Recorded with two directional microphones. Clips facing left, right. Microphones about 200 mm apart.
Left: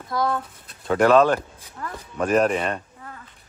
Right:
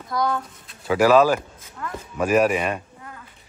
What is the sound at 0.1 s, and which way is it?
Speech, centre (ahead or behind).